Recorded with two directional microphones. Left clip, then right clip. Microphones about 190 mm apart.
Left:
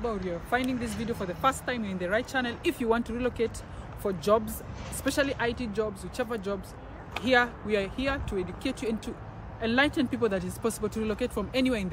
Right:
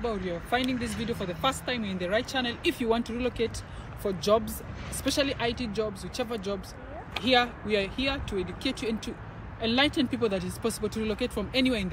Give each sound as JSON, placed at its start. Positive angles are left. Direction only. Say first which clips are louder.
{"t": 0.0, "sound": "speech", "louder": "right 1 dB", "side_deg": 0}
{"t": 0.6, "sound": "speech", "louder": "right 1 dB", "side_deg": 30}
{"t": 1.4, "sound": "speech", "louder": "left 2 dB", "side_deg": 0}